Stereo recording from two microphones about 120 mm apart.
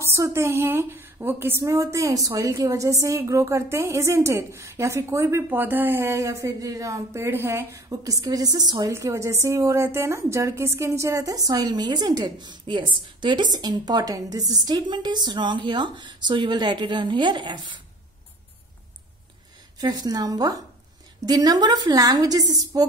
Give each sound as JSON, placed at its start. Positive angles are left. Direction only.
{"t": 0.0, "sound": "a woman's voice", "side_deg": -20}
{"t": 8.9, "sound": "a woman's voice", "side_deg": -25}
{"t": 19.8, "sound": "a woman's voice", "side_deg": -35}